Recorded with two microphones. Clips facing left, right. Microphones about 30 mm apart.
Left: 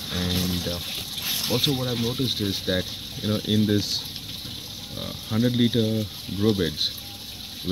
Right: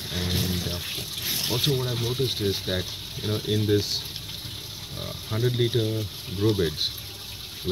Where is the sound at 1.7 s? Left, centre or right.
Centre.